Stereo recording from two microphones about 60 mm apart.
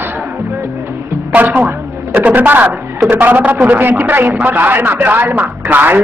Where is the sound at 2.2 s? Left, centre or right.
Right.